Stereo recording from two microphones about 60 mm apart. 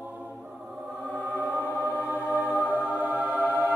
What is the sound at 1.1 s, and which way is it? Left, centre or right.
Music, right.